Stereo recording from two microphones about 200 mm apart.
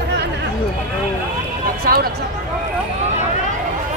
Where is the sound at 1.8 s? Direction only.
45° right (ahead or behind).